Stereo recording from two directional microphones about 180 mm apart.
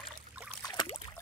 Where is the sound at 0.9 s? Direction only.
30° left (ahead or behind).